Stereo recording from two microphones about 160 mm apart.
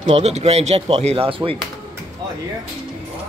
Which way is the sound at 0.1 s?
45° right (ahead or behind).